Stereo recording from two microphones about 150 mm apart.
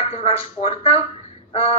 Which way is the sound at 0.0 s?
40° left (ahead or behind).